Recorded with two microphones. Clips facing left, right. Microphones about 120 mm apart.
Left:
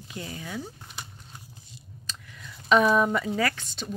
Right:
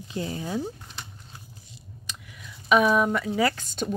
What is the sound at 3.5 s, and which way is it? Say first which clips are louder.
Speech: right 7 dB; 45° right (ahead or behind).